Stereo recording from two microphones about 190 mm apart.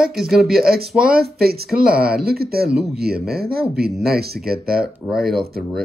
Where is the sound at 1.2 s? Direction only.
55° right (ahead or behind).